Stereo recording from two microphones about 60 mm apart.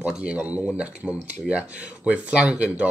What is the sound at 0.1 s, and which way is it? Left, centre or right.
Speech, centre.